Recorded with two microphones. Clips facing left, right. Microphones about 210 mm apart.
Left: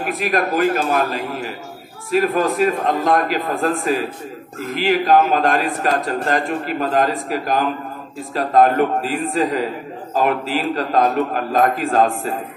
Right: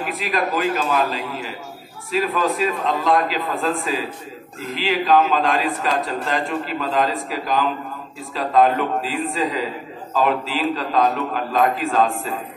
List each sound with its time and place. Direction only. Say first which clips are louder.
0.0 s a man's voice: left 3 dB; 50° left (ahead or behind)